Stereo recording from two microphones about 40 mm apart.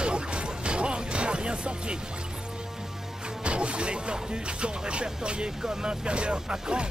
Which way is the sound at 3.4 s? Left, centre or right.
Right.